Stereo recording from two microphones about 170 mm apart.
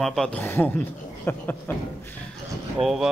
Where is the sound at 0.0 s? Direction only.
Centre (ahead or behind).